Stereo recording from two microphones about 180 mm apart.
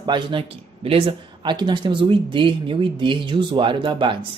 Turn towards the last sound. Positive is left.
turn(degrees=-25)  # may be behind; listen again after turning